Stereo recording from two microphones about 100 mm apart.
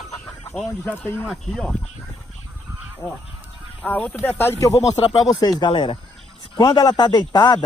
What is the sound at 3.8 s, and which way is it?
Speech, 15° left (ahead or behind).